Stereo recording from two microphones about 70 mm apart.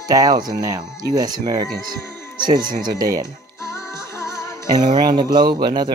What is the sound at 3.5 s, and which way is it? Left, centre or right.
Music, left.